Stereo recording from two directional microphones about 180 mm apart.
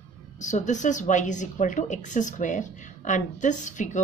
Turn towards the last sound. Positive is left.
turn(degrees=45)  # may be behind; listen again after turning